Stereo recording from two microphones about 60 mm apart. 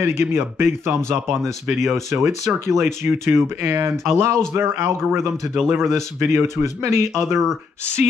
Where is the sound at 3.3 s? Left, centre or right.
Right.